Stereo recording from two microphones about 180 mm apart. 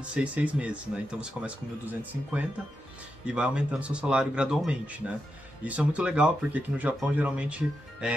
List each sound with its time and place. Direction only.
0.0 s speech: 5° right (ahead or behind)